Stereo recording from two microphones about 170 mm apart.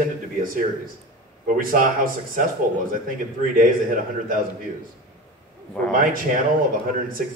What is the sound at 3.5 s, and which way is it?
Speech, 55° right (ahead or behind).